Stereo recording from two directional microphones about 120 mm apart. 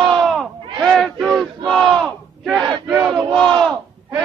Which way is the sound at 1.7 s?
5° left (ahead or behind).